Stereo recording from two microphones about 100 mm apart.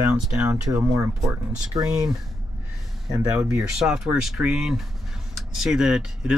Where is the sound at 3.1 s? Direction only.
40° right (ahead or behind).